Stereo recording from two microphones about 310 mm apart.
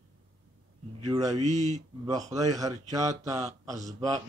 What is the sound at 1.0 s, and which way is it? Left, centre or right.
Speech, centre.